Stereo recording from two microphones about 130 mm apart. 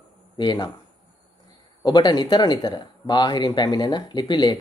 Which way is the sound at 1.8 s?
30° left (ahead or behind).